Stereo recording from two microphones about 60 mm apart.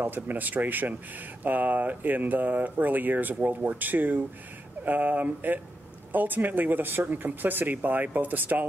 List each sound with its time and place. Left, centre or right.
0.0 s speech: right